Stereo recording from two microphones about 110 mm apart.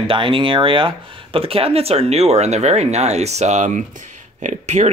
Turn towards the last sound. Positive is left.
turn(degrees=-90)